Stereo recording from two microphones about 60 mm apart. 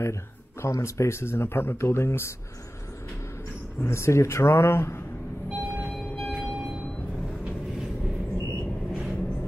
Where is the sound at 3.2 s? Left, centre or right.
Left.